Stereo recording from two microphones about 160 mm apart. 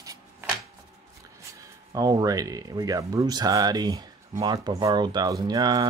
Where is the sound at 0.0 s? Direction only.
20° right (ahead or behind).